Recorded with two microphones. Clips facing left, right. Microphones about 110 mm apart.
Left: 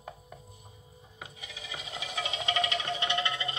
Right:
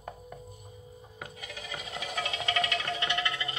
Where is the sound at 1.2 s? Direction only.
55° right (ahead or behind).